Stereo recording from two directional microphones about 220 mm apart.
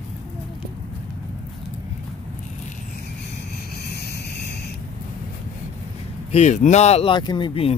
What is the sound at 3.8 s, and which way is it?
Vehicle, 45° left (ahead or behind).